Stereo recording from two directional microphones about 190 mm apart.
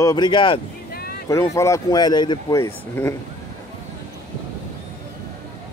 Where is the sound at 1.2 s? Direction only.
15° left (ahead or behind).